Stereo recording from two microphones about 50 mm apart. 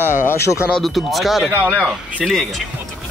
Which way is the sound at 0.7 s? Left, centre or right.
Centre.